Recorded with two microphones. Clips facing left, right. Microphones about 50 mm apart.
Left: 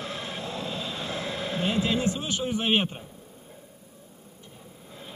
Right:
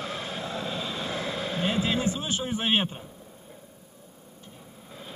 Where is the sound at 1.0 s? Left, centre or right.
Right.